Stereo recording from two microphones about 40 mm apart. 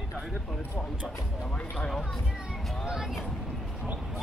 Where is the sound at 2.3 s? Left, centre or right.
Centre.